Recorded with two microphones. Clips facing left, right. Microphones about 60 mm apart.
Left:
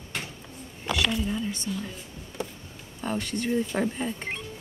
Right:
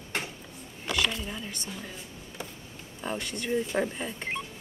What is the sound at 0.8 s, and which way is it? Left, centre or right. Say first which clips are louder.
Speech: left 3 dB; centre.